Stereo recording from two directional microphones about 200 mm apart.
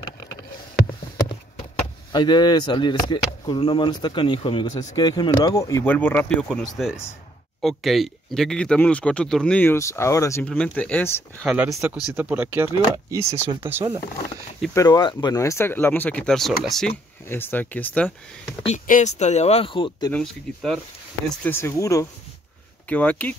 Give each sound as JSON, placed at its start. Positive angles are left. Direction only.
{"t": 2.1, "sound": "speech", "side_deg": 20}
{"t": 11.4, "sound": "speech", "side_deg": -5}
{"t": 14.7, "sound": "speech", "side_deg": 20}
{"t": 18.7, "sound": "speech", "side_deg": 35}
{"t": 20.1, "sound": "speech", "side_deg": 5}